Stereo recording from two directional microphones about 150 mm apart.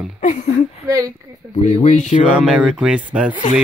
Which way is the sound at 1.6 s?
50° left (ahead or behind).